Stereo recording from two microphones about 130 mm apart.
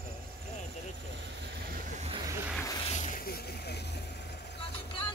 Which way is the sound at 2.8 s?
70° left (ahead or behind).